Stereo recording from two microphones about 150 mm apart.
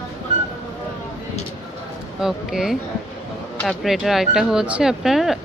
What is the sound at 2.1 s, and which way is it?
Speech, 5° right (ahead or behind).